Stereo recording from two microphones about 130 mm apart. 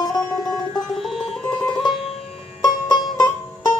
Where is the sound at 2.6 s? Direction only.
35° left (ahead or behind).